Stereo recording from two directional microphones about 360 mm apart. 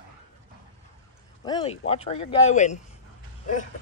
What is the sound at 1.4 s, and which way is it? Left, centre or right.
Speech, centre.